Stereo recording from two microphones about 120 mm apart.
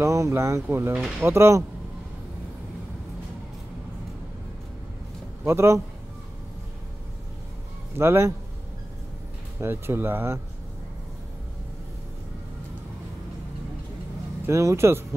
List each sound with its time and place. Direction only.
0.0 s speech: 25° right (ahead or behind)
5.4 s speech: 20° right (ahead or behind)
8.0 s speech: 20° right (ahead or behind)
9.6 s speech: 20° right (ahead or behind)
14.4 s speech: 25° right (ahead or behind)